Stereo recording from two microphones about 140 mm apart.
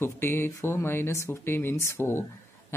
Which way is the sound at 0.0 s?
15° left (ahead or behind).